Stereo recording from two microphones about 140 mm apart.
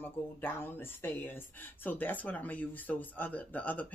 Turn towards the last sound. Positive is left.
turn(degrees=10)  # may be behind; listen again after turning